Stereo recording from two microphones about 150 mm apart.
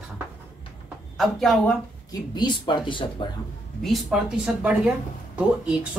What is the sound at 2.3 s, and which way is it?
Speech, 30° left (ahead or behind).